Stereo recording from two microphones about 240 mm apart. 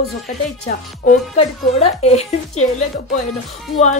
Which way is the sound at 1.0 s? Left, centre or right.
Left.